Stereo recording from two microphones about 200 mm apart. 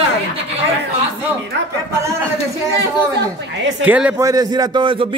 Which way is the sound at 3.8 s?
10° right (ahead or behind).